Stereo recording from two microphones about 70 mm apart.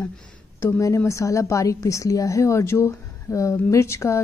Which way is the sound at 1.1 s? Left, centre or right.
Left.